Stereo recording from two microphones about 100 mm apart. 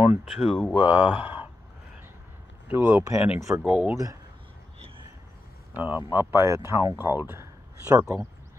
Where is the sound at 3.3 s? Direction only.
30° right (ahead or behind).